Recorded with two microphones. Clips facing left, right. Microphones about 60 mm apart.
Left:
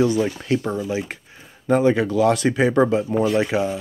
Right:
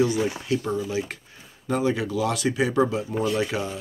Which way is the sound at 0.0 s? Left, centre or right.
Left.